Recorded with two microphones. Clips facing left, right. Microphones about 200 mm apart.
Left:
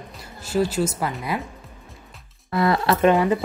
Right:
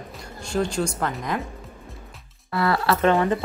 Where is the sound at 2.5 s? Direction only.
20° left (ahead or behind).